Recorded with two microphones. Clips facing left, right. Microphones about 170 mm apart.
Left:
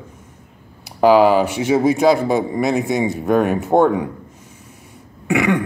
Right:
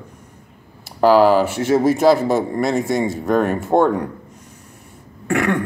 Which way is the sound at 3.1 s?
15° left (ahead or behind).